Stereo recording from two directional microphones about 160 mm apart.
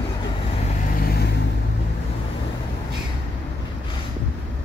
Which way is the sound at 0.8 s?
65° left (ahead or behind).